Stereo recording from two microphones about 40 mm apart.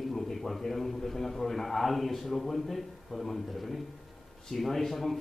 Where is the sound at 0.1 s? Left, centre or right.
Centre.